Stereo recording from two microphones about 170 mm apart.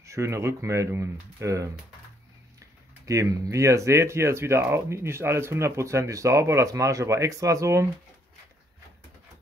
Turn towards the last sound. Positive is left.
turn(degrees=-15)  # may be behind; listen again after turning